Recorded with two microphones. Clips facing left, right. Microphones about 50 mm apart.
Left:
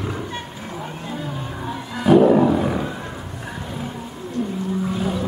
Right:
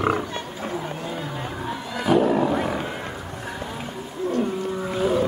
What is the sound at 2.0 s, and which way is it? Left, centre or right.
Roar, centre.